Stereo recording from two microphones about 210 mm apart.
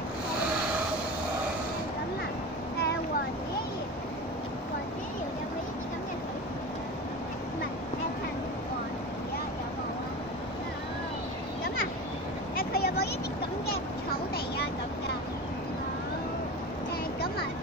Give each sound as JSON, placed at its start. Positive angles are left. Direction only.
{"t": 12.5, "sound": "vehicle", "side_deg": 45}